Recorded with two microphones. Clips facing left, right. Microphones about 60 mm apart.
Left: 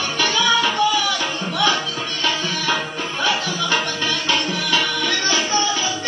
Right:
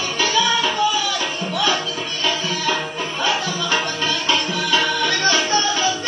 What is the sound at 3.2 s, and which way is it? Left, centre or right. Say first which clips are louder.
Music: even; right.